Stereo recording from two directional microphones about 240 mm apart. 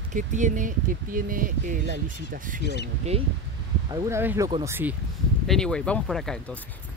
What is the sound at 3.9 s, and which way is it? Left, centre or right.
Speech, centre.